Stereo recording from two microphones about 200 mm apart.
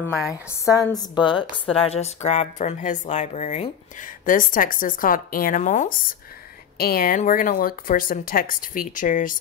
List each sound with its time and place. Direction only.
0.3 s a woman's voice: 15° left (ahead or behind); by 9.4 s 40° left (ahead or behind)